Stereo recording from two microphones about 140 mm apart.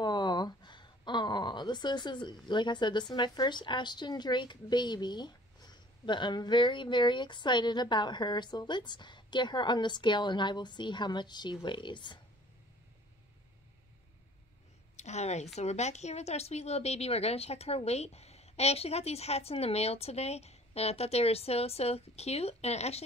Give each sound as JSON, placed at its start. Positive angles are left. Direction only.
{"t": 0.0, "sound": "a sound", "side_deg": 30}
{"t": 2.4, "sound": "speech", "side_deg": 35}
{"t": 15.0, "sound": "a woman's voice", "side_deg": 55}